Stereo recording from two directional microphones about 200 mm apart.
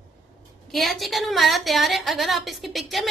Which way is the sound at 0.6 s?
Centre (ahead or behind).